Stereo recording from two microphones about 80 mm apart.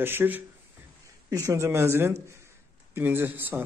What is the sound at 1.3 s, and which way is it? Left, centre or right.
Speech, right.